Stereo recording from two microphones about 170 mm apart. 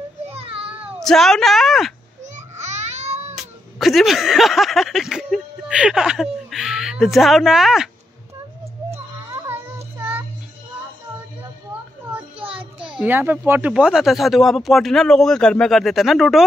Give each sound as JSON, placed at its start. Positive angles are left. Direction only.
{"t": 0.7, "sound": "cat", "side_deg": -10}
{"t": 1.0, "sound": "speech", "side_deg": 0}
{"t": 2.3, "sound": "baby cry", "side_deg": -40}
{"t": 3.3, "sound": "speech", "side_deg": 0}
{"t": 8.9, "sound": "child singing", "side_deg": -15}
{"t": 12.4, "sound": "a sound", "side_deg": -30}
{"t": 13.0, "sound": "speech", "side_deg": -10}